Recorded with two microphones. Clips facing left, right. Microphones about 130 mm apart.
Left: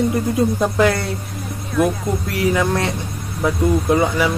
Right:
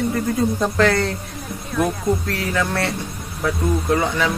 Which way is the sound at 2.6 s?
15° left (ahead or behind).